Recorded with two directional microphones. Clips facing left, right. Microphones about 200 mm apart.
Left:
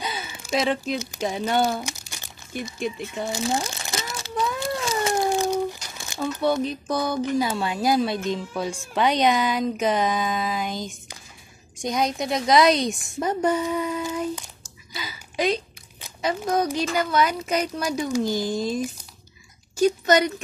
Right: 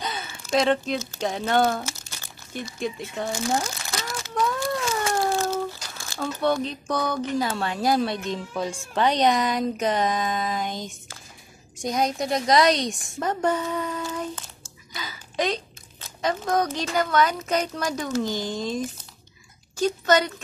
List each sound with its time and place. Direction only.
0.0 s speech: 5° left (ahead or behind)
2.8 s speech: 5° left (ahead or behind)
3.3 s crunch: 25° left (ahead or behind)
5.7 s crumpling: 20° left (ahead or behind)
6.4 s speech: 10° left (ahead or behind)
12.0 s speech: centre (ahead or behind)
14.9 s a sound: 10° left (ahead or behind)
16.0 s speech: 10° left (ahead or behind)
20.1 s speech: 15° left (ahead or behind)